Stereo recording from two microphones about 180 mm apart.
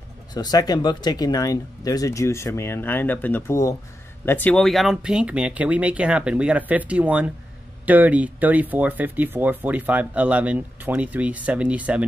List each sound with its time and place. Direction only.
0.3 s speech: 20° left (ahead or behind); by 12.1 s 5° right (ahead or behind)